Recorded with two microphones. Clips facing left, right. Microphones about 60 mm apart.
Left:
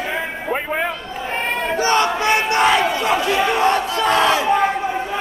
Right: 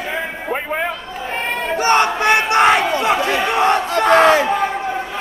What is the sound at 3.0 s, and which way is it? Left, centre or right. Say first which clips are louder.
Chatter: right 1 dB; right.